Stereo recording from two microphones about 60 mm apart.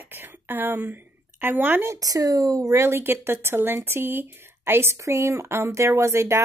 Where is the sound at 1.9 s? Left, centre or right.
Right.